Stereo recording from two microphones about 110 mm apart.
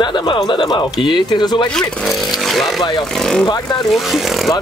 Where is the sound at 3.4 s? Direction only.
40° left (ahead or behind).